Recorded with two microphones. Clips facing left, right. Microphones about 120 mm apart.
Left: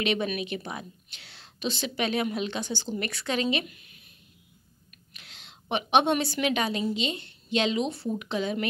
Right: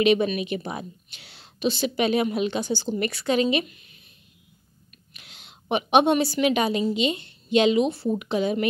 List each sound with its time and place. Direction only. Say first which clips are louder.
0.0 s a woman's voice: right 7 dB; 10° right (ahead or behind)
5.1 s a woman's voice: right 1 dB; 10° right (ahead or behind)